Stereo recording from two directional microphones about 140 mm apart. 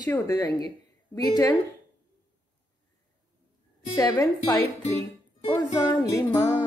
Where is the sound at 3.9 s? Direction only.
25° left (ahead or behind).